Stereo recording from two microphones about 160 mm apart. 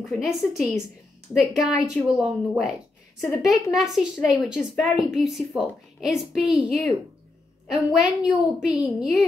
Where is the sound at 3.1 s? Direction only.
Centre (ahead or behind).